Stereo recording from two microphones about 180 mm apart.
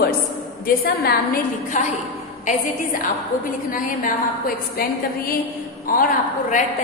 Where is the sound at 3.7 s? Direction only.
50° left (ahead or behind).